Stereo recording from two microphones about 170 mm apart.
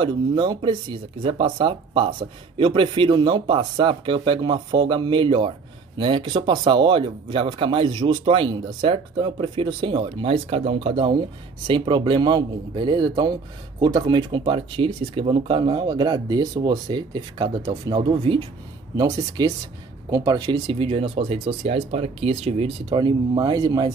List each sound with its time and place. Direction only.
0.0 s speech: 25° right (ahead or behind)